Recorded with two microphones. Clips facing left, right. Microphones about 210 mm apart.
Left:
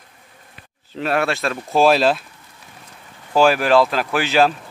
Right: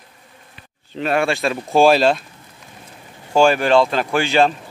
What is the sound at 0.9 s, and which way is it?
Speech, centre (ahead or behind).